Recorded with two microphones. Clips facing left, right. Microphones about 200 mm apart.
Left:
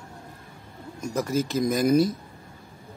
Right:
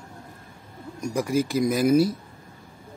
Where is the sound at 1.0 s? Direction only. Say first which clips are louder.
Right 2 dB; 15° right (ahead or behind).